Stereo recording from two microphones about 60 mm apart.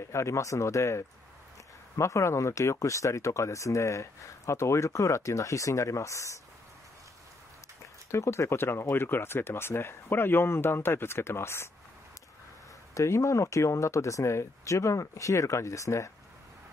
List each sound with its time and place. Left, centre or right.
0.1 s speech: left
8.1 s speech: left
12.9 s speech: left